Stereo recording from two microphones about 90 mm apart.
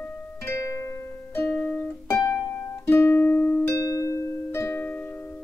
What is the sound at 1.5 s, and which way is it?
Music, 15° left (ahead or behind).